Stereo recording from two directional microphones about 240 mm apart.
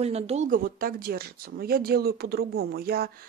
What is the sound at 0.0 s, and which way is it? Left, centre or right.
Speech, right.